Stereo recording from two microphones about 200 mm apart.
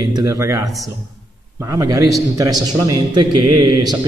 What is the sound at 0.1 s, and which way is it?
A man's voice, 15° right (ahead or behind).